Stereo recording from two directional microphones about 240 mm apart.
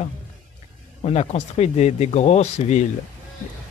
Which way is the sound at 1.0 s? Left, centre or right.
Left.